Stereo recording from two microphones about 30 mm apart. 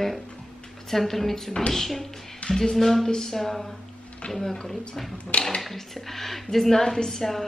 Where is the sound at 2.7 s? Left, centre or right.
Centre.